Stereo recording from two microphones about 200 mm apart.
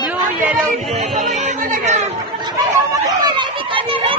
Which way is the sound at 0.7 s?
35° right (ahead or behind).